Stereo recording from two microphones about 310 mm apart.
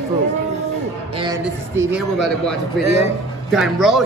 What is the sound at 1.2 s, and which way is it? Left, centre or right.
A man's voice, centre.